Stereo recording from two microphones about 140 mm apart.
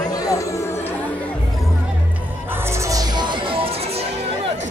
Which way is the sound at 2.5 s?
20° right (ahead or behind).